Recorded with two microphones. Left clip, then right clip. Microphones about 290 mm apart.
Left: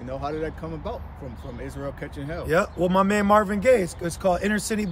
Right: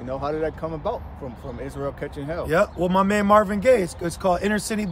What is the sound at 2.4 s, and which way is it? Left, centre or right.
A man's voice, centre.